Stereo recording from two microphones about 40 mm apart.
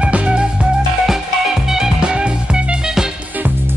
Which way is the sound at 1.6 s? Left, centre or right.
Centre.